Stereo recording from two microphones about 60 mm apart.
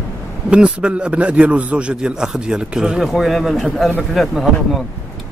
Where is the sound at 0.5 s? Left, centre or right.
Centre.